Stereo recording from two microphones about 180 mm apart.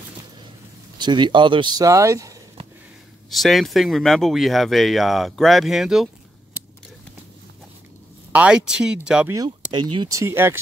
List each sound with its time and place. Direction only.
0.9 s speech: 25° right (ahead or behind)
3.3 s speech: centre (ahead or behind)
8.3 s speech: 5° right (ahead or behind)
9.7 s speech: 25° right (ahead or behind)